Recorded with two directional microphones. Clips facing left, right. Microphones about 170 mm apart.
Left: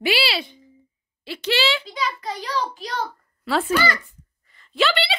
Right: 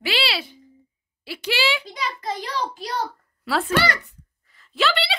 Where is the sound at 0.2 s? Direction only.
Centre (ahead or behind).